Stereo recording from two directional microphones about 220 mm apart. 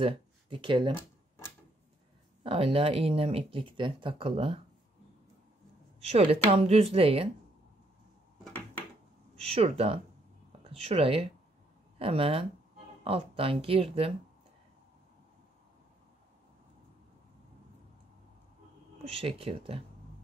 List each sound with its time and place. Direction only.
0.0 s speech: 20° right (ahead or behind)
2.4 s speech: 25° right (ahead or behind)
6.0 s speech: 25° right (ahead or behind)
9.3 s a woman's voice: 25° right (ahead or behind)
19.1 s speech: 25° right (ahead or behind)